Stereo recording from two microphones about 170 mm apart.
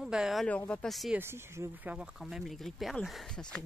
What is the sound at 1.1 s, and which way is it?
Speech, 15° right (ahead or behind).